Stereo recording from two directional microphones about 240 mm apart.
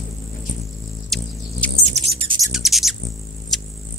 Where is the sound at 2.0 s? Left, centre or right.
Right.